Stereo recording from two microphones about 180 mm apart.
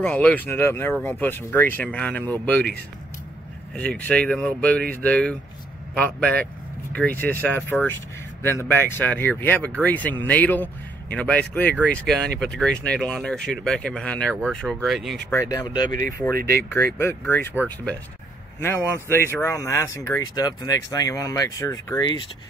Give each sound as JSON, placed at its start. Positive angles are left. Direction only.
{"t": 0.0, "sound": "speech", "side_deg": 10}
{"t": 3.7, "sound": "speech", "side_deg": 10}
{"t": 15.2, "sound": "speech", "side_deg": 15}
{"t": 15.9, "sound": "speech", "side_deg": -50}
{"t": 16.7, "sound": "speech", "side_deg": 15}
{"t": 17.6, "sound": "speech", "side_deg": -10}
{"t": 19.0, "sound": "speech", "side_deg": 15}